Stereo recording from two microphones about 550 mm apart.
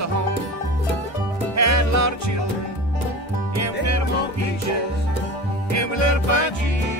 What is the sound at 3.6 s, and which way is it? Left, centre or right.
Music, right.